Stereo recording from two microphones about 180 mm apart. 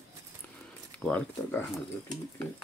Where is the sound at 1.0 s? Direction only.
5° left (ahead or behind).